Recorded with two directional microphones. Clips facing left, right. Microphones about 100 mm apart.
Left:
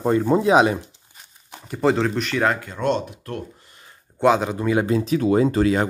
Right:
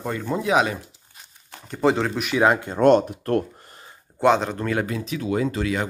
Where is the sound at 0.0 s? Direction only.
30° left (ahead or behind).